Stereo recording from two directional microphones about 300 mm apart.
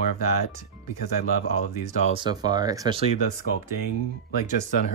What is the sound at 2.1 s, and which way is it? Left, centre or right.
Speech, centre.